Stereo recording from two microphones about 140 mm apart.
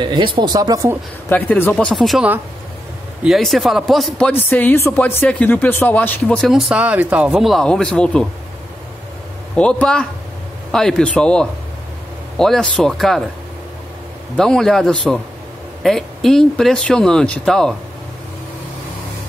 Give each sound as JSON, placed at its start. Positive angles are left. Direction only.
{"t": 0.0, "sound": "speech", "side_deg": -35}
{"t": 1.3, "sound": "speech", "side_deg": 10}
{"t": 1.9, "sound": "speech", "side_deg": 0}
{"t": 3.3, "sound": "speech", "side_deg": 0}
{"t": 4.3, "sound": "speech", "side_deg": 15}
{"t": 9.6, "sound": "speech", "side_deg": 5}
{"t": 14.3, "sound": "speech", "side_deg": 5}